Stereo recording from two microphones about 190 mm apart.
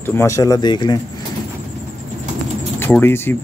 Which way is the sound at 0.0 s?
10° left (ahead or behind).